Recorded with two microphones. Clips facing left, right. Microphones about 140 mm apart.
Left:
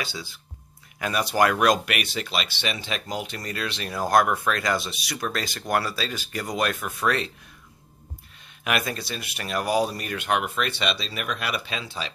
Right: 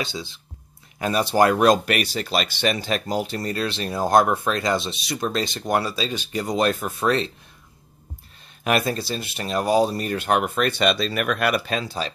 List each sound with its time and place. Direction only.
0.0 s speech: 25° right (ahead or behind)
8.6 s speech: 35° right (ahead or behind)